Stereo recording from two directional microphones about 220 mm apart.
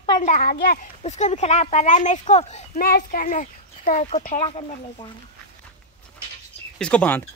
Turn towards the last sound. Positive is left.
turn(degrees=5)  # may be behind; listen again after turning